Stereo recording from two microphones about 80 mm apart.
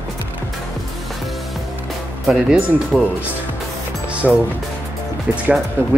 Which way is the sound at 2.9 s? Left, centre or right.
Centre.